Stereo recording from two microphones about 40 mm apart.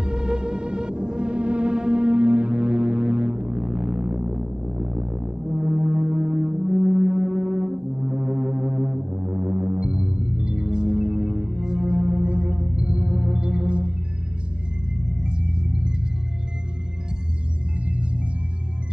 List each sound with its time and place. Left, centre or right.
0.0 s music: right
5.4 s brass instrument: centre
15.0 s music: right
17.8 s music: right